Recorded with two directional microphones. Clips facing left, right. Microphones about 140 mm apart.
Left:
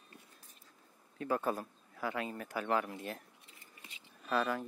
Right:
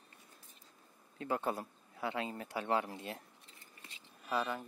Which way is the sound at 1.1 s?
25° right (ahead or behind).